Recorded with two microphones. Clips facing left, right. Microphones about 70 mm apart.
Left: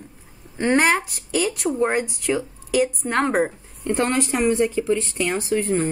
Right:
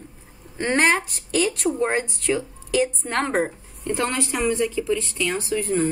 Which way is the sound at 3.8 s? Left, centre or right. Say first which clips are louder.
Left 3 dB; left.